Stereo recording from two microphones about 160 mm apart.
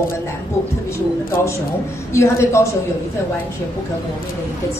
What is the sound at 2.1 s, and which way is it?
Speech, 15° left (ahead or behind).